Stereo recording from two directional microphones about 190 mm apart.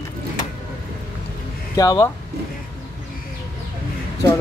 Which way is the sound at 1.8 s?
20° left (ahead or behind).